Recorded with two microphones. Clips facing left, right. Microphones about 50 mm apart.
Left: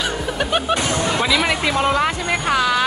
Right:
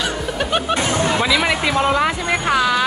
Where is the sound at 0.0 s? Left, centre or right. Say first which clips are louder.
Even; centre.